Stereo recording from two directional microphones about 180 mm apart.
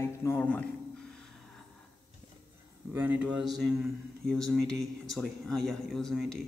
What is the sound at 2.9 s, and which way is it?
Speech, 10° right (ahead or behind).